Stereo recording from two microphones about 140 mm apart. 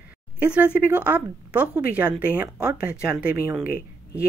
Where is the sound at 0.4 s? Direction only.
10° right (ahead or behind).